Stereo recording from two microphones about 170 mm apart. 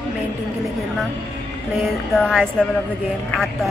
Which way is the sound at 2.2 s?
Centre (ahead or behind).